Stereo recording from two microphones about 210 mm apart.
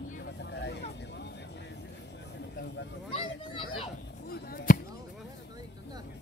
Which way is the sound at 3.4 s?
25° left (ahead or behind).